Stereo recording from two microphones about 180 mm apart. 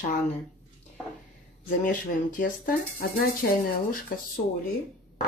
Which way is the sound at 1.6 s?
50° left (ahead or behind).